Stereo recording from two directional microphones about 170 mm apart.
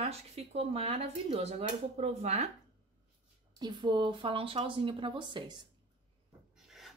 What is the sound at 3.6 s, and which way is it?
Speech, 25° right (ahead or behind).